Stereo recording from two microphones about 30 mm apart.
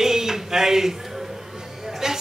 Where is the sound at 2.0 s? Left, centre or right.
Centre.